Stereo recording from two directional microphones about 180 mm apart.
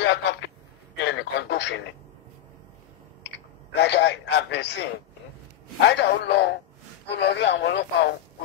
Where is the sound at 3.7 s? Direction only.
75° left (ahead or behind).